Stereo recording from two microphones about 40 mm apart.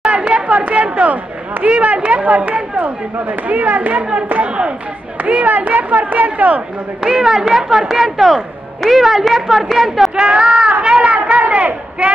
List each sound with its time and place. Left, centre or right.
0.1 s speech: right
7.0 s a woman's voice: centre
10.1 s speech: right
11.1 s speech: right